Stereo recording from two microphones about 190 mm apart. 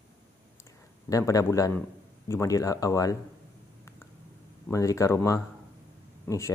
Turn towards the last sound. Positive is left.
turn(degrees=15)  # may be behind; listen again after turning